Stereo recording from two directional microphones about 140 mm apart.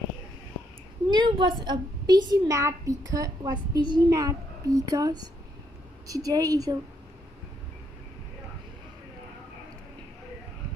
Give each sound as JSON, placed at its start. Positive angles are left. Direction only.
{"t": 1.1, "sound": "a child's voice", "side_deg": -35}